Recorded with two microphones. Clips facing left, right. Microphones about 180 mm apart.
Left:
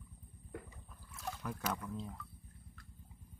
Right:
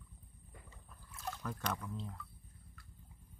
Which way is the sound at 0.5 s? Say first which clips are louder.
Left 12 dB; 70° left (ahead or behind).